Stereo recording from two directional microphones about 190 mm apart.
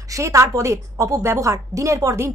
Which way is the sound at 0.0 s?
15° right (ahead or behind).